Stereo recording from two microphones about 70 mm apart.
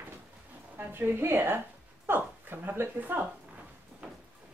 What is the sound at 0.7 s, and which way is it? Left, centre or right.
A woman's voice, right.